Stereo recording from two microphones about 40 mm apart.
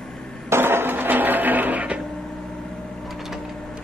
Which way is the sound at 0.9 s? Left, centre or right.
Right.